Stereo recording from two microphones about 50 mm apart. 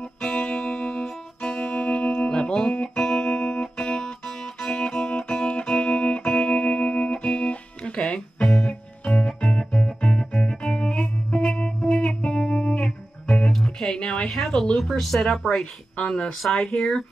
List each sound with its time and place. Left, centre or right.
0.2 s music: left
16.0 s speech: left
16.4 s speech: centre